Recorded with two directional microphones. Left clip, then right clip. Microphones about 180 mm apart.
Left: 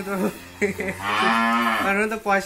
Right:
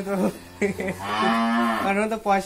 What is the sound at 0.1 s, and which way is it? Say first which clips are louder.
Speech: right 1 dB; 50° right (ahead or behind).